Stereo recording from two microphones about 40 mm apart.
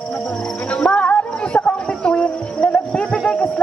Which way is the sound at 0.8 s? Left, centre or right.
Left.